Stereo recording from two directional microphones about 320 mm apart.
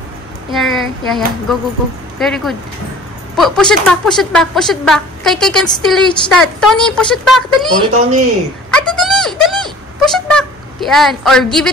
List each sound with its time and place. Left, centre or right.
0.5 s speech: centre
7.8 s speech: right
8.6 s speech: centre